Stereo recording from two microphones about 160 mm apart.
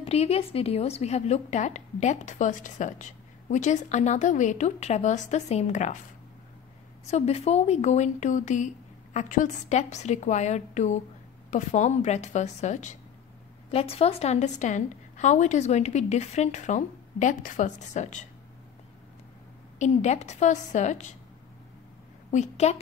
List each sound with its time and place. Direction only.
0.0 s a woman's voice: 40° left (ahead or behind)
7.1 s a woman's voice: 45° left (ahead or behind)
19.8 s a woman's voice: 45° left (ahead or behind)
22.3 s a woman's voice: 45° left (ahead or behind)